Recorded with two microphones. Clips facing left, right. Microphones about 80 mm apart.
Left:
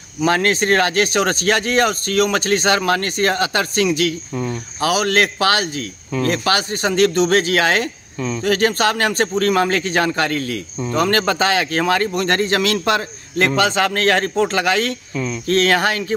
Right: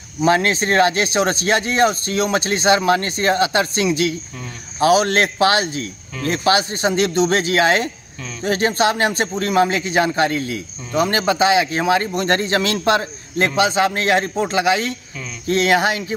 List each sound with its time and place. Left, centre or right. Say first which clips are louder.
0.2 s speech: even; right